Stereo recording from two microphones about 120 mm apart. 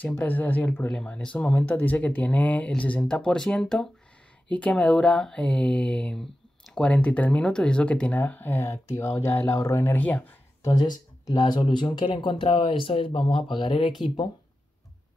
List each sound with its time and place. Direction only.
0.0 s speech: 15° left (ahead or behind)
10.6 s speech: 35° left (ahead or behind)